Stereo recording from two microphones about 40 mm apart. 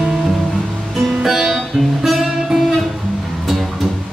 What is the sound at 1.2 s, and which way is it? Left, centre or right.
Music, centre.